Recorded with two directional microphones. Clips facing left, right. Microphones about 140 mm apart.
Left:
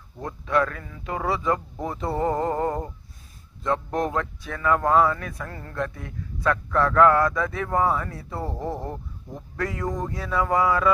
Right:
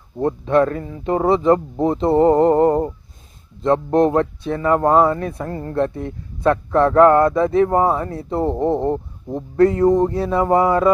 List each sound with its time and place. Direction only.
0.2 s speech: 30° right (ahead or behind)